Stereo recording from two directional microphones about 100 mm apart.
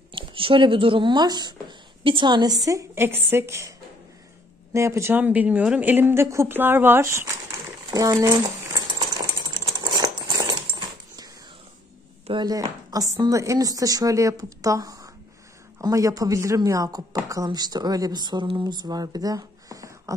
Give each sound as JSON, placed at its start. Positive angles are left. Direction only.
{"t": 0.1, "sound": "speech", "side_deg": -60}
{"t": 4.7, "sound": "a woman's voice", "side_deg": -30}
{"t": 5.1, "sound": "a woman's voice", "side_deg": -15}
{"t": 9.4, "sound": "typing", "side_deg": -45}
{"t": 12.4, "sound": "speech", "side_deg": -40}